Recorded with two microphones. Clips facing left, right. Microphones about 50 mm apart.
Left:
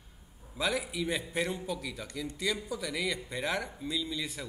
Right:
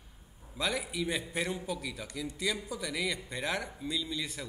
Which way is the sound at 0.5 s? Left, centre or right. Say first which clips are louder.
Left 1 dB; centre.